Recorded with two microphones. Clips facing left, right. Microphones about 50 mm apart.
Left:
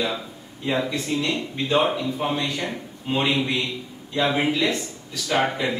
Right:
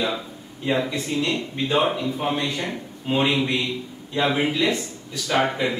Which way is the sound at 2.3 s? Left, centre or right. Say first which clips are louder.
Right 1 dB; centre.